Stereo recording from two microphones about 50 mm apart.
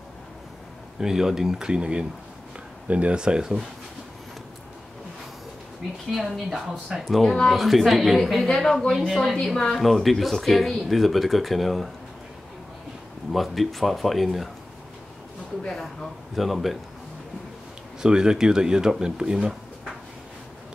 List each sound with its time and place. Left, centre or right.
0.9 s speech: centre
6.1 s speech: centre
13.3 s speech: centre
15.6 s speech: centre
18.0 s speech: centre